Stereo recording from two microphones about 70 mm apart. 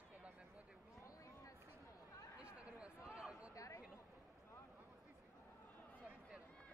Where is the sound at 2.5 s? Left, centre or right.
Centre.